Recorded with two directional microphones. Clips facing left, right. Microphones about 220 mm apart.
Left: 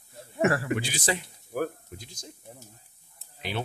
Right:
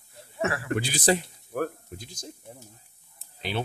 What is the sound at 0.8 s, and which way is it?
Speech, 35° right (ahead or behind).